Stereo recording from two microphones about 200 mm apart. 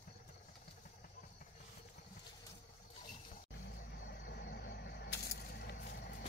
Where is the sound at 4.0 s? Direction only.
50° left (ahead or behind).